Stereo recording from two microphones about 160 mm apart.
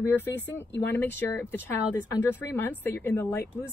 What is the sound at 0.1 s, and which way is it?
Speech, 15° left (ahead or behind).